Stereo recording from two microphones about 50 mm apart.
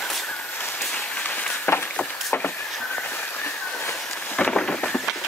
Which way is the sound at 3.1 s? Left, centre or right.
Left.